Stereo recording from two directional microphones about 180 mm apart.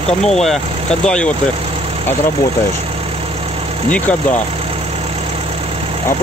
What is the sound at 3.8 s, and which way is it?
Speech, 10° left (ahead or behind).